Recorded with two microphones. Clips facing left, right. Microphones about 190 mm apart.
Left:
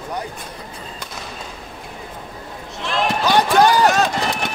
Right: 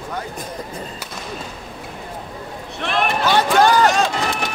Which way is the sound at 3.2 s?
15° left (ahead or behind).